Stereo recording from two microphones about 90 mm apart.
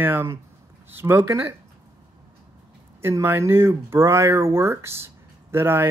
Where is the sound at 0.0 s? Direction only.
25° right (ahead or behind).